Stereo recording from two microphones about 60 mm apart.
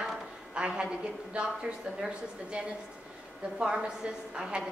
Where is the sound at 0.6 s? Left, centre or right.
Centre.